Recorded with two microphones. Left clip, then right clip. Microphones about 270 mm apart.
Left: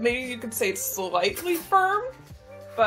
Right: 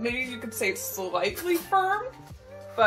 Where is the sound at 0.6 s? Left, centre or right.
Left.